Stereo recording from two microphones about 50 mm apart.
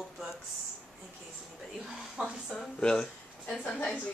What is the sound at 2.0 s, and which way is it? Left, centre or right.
Speech, centre.